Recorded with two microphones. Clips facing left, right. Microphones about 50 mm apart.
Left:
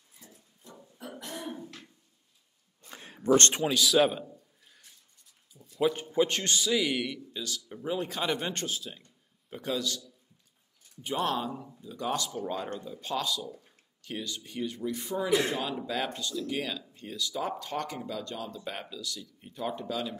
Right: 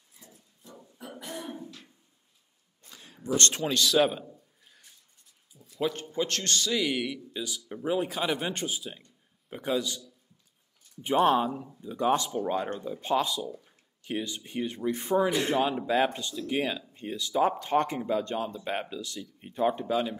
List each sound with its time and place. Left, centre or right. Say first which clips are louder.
0.7 s beatboxing: even; centre
2.9 s a sound: left 4 dB; left
3.6 s a man's voice: even; centre
5.6 s a sound: left 3 dB; centre
6.0 s speech: left 3 dB; centre
7.3 s speech: right 2 dB; centre